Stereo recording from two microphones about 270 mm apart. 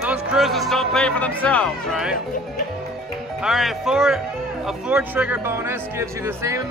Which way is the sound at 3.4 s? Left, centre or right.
Centre.